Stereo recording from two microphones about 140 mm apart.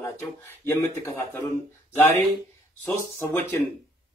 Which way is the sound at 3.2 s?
15° left (ahead or behind).